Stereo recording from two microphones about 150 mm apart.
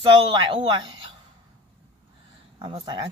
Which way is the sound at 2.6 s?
30° right (ahead or behind).